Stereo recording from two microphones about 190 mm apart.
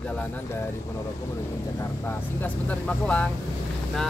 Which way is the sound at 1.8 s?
10° left (ahead or behind).